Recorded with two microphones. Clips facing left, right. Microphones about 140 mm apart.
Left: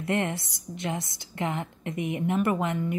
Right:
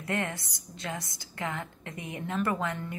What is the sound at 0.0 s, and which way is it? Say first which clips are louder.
Speech: left 5 dB; 20° left (ahead or behind).